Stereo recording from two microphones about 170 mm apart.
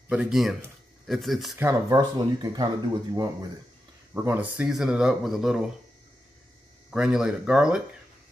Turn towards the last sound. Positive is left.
turn(degrees=-5)  # may be behind; listen again after turning